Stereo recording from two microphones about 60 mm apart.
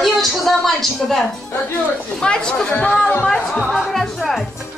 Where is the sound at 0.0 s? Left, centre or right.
Centre.